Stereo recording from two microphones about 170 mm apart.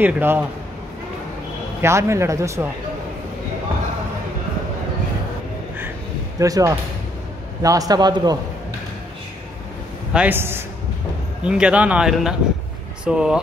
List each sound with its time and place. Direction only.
0.0 s a man's voice: 10° right (ahead or behind)
1.8 s a man's voice: 15° right (ahead or behind)
6.4 s a man's voice: 20° right (ahead or behind)
10.1 s a man's voice: 10° right (ahead or behind)